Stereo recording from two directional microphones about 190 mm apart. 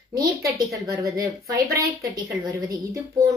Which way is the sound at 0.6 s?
15° right (ahead or behind).